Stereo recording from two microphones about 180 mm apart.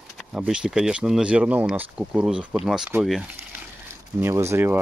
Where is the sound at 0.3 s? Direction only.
5° right (ahead or behind).